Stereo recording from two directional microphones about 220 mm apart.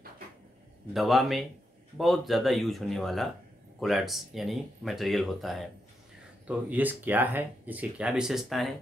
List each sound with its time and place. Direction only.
0.9 s speech: centre (ahead or behind)